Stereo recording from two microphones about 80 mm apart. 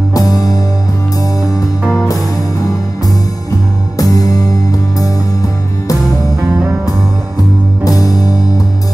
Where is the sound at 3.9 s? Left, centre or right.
Left.